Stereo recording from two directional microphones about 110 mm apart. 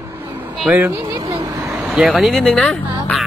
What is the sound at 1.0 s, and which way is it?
Vehicle, 35° right (ahead or behind).